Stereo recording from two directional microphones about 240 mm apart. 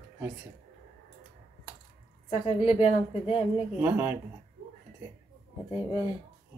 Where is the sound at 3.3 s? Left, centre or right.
Centre.